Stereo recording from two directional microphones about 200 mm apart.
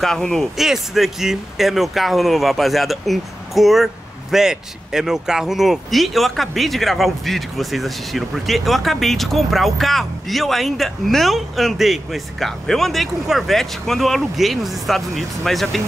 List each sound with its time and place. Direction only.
0.0 s speech: centre (ahead or behind)